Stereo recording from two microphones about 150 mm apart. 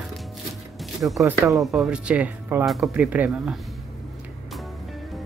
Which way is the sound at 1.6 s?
Centre (ahead or behind).